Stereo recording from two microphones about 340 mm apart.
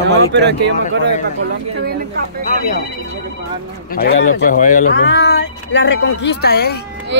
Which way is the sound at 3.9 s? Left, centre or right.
Left.